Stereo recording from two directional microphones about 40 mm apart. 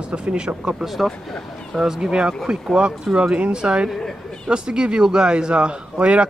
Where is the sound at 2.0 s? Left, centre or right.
Right.